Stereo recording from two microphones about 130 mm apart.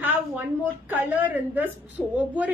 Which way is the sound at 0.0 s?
15° right (ahead or behind).